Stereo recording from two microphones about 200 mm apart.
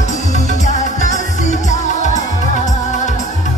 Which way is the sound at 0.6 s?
35° left (ahead or behind).